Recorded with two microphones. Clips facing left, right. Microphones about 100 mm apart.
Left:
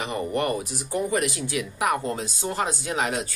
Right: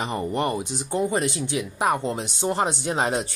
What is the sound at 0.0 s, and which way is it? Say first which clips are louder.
Speech: right 1 dB; 30° right (ahead or behind).